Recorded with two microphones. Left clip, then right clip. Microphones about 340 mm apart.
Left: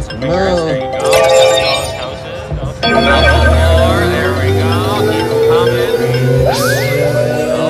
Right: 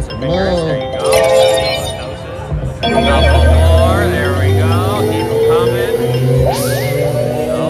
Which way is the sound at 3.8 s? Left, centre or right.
Centre.